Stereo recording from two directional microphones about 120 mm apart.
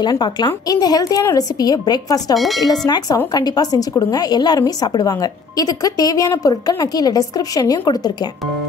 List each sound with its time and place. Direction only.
0.0 s a woman's voice: 35° left (ahead or behind)
2.3 s speech: centre (ahead or behind)
3.3 s a woman's voice: 35° left (ahead or behind)